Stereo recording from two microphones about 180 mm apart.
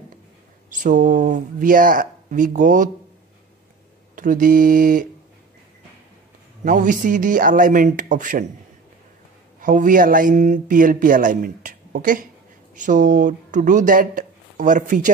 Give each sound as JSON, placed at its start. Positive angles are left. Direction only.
{"t": 0.7, "sound": "a man's voice", "side_deg": -45}
{"t": 4.1, "sound": "a man's voice", "side_deg": -50}
{"t": 6.6, "sound": "a man's voice", "side_deg": -45}
{"t": 9.6, "sound": "a man's voice", "side_deg": -50}